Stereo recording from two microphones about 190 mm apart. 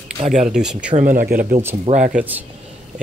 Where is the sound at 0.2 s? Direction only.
35° right (ahead or behind).